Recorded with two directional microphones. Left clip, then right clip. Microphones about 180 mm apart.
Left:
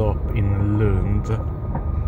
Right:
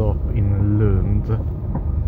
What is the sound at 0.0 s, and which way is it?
Vehicle, 10° left (ahead or behind).